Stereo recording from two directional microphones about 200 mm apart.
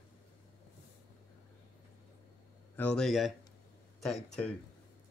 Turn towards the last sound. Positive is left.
turn(degrees=0)  # may be behind; listen again after turning